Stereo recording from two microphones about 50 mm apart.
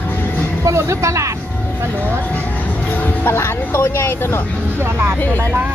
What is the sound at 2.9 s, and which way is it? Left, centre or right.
Speech, left.